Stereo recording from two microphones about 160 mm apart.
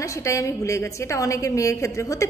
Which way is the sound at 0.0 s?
20° left (ahead or behind).